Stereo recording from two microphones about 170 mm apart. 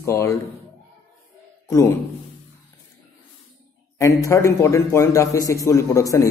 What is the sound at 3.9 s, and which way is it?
A man's voice, 15° left (ahead or behind).